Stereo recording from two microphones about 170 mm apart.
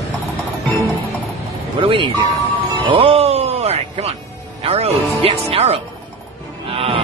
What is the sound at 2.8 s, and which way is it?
Music, 30° right (ahead or behind).